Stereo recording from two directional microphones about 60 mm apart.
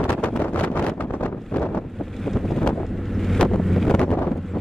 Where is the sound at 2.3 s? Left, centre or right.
Centre.